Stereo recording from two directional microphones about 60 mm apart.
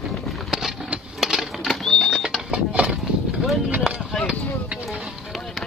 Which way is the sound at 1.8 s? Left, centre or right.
Centre.